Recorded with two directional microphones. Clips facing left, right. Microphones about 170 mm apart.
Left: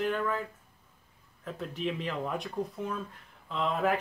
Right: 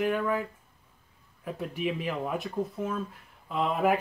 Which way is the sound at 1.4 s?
10° right (ahead or behind).